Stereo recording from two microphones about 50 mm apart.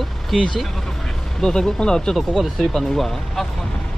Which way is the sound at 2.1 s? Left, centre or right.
Centre.